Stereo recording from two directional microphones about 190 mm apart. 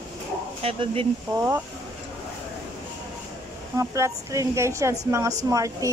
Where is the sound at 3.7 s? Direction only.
15° right (ahead or behind).